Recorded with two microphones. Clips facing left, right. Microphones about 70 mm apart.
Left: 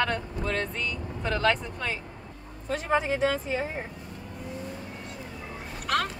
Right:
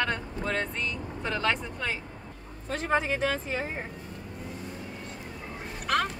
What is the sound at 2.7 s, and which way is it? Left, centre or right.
Speech, right.